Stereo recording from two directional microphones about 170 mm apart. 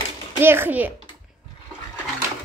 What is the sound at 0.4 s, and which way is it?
Speech, 15° right (ahead or behind).